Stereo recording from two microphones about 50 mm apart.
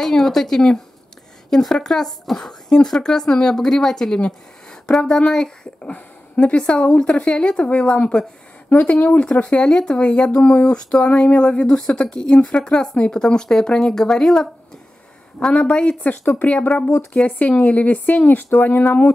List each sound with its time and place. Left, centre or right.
0.0 s a woman's voice: centre
8.6 s speech: left
9.2 s a woman's voice: left